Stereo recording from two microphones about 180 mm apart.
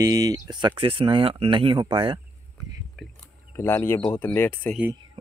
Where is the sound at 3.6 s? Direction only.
15° left (ahead or behind).